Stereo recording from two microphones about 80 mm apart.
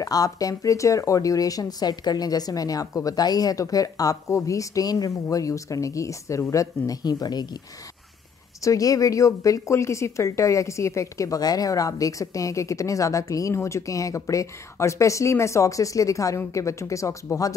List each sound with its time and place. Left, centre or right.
0.0 s a woman's voice: left
8.6 s a woman's voice: left